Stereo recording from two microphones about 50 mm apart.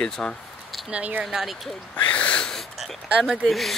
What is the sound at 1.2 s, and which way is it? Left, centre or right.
Speech, centre.